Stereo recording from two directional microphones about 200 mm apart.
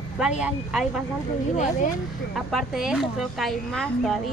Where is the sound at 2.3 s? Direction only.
Centre (ahead or behind).